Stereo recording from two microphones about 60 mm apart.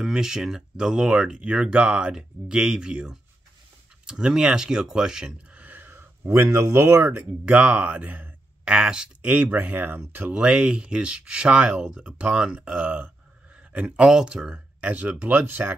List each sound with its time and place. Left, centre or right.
0.0 s speech: centre; by 5.9 s right
5.9 s speech: right
7.4 s speech: centre
8.6 s speech: centre
9.2 s speech: right
10.3 s speech: centre